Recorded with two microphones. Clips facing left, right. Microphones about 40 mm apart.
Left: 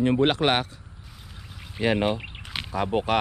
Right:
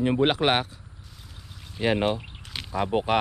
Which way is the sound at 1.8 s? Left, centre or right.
Centre.